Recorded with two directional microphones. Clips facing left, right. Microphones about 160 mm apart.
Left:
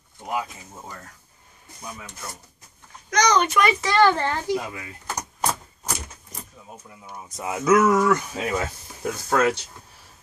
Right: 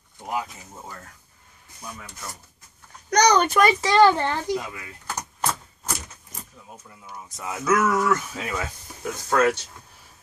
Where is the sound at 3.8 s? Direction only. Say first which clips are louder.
Right 2 dB; 20° right (ahead or behind).